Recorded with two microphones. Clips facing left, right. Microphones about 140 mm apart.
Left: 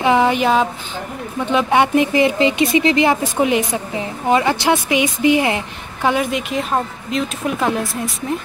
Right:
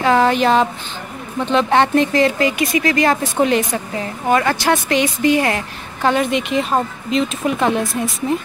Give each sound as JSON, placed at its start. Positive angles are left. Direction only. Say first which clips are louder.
{"t": 0.0, "sound": "a sound", "louder": "right 1 dB", "side_deg": 15}
{"t": 1.4, "sound": "a woman's voice", "louder": "right 1 dB", "side_deg": 10}
{"t": 6.0, "sound": "speech", "louder": "right 1 dB", "side_deg": 5}